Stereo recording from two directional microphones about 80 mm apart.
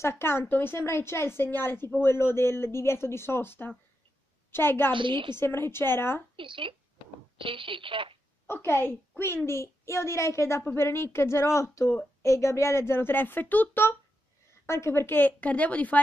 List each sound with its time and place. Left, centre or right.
0.0 s a woman's voice: left
4.9 s speech: right
5.4 s a woman's voice: left
6.3 s speech: right
8.5 s a woman's voice: left
14.7 s speech: left; by 16.0 s centre